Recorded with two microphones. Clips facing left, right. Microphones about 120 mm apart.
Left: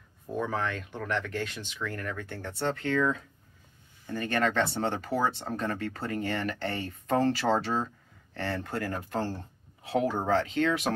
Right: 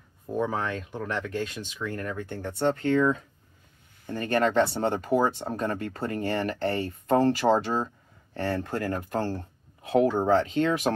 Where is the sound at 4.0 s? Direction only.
45° right (ahead or behind).